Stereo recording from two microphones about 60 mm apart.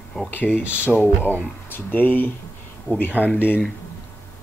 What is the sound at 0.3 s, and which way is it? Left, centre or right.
Speech, left.